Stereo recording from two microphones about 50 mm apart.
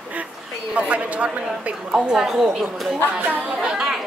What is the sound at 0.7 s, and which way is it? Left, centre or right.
Speech, right.